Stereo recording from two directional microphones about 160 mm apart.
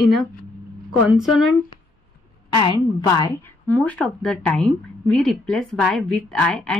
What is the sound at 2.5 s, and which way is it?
Speech, 25° left (ahead or behind).